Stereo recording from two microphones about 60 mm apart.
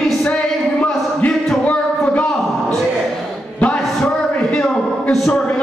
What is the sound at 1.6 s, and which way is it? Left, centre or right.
Music, left.